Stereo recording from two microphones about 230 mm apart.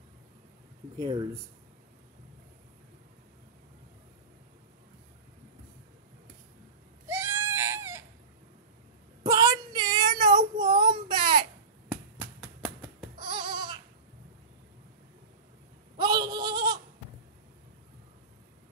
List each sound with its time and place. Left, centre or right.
0.9 s speech: centre
7.1 s goat: centre
9.2 s child singing: centre
11.9 s a sound: centre
13.1 s a sound: right
16.0 s goat: centre